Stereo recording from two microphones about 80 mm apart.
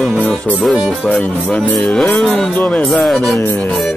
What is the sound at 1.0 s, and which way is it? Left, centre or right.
Speech, centre.